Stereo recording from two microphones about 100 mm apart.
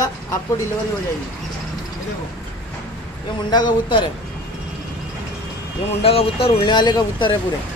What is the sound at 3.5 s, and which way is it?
Speech, 50° left (ahead or behind).